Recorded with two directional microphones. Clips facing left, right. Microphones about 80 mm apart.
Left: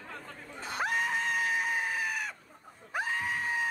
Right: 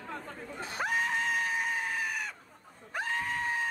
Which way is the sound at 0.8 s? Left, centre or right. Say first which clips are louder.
Even; centre.